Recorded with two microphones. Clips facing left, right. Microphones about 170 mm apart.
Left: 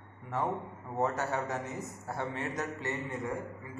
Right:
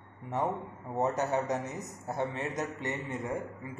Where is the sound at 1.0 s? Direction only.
20° right (ahead or behind).